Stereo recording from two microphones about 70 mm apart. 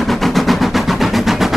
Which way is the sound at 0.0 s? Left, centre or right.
Centre.